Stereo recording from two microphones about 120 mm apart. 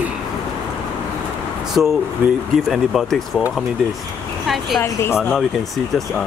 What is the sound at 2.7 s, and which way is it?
Speech, centre (ahead or behind).